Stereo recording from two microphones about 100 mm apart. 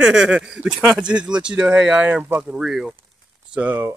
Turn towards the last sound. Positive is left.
turn(degrees=-15)  # may be behind; listen again after turning